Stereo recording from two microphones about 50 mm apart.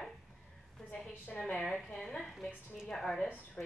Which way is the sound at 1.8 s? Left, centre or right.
Centre.